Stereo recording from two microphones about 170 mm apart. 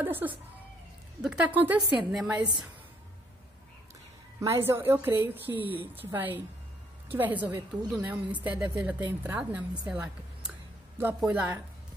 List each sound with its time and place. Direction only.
0.0 s a woman's voice: 10° right (ahead or behind)
2.3 s a woman's voice: 25° right (ahead or behind)
4.4 s a woman's voice: 15° right (ahead or behind)